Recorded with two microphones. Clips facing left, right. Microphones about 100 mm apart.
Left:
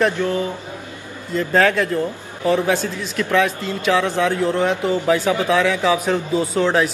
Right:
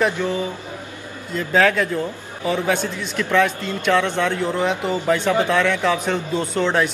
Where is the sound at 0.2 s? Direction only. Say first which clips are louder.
Left 2 dB; 15° right (ahead or behind).